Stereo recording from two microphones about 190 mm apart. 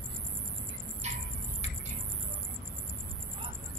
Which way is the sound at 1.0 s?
35° right (ahead or behind).